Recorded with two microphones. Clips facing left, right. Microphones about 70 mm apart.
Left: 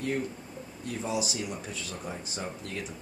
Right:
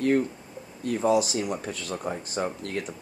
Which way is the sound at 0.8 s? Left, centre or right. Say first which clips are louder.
Right 9 dB; right.